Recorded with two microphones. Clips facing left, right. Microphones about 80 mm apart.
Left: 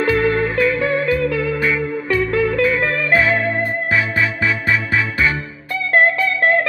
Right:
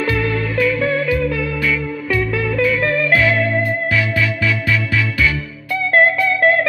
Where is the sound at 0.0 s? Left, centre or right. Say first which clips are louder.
Left 3 dB; left.